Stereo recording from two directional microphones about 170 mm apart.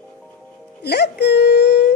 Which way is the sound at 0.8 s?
75° left (ahead or behind).